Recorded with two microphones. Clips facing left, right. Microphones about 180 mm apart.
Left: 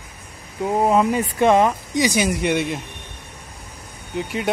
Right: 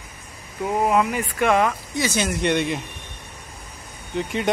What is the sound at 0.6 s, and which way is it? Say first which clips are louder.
Speech: left 3 dB; 20° left (ahead or behind).